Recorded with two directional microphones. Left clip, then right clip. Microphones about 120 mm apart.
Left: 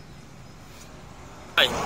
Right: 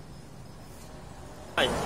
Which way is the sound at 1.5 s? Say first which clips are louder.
Left 5 dB; 5° left (ahead or behind).